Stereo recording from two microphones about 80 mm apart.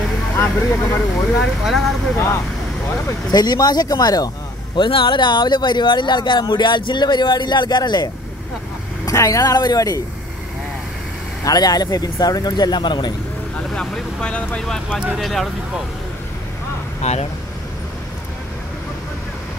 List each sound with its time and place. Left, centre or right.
0.4 s speech: left
1.6 s speech: centre
2.1 s speech: left
3.3 s speech: left
4.7 s speech: left
9.0 s speech: left
11.4 s speech: left
13.7 s speech: centre